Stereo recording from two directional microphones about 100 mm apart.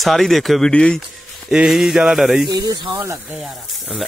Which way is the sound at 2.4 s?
45° right (ahead or behind).